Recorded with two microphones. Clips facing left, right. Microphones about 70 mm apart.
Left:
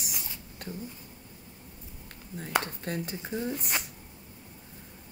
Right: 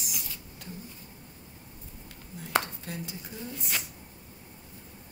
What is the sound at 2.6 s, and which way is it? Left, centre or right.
Speech, left.